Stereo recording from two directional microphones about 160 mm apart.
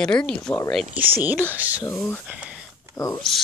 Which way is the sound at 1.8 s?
5° left (ahead or behind).